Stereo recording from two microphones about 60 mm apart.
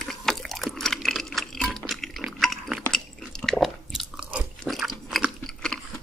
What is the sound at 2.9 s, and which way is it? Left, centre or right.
Chewing, centre.